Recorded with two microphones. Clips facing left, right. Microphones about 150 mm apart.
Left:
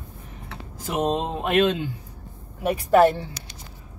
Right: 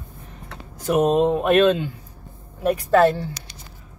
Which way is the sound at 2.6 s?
10° left (ahead or behind).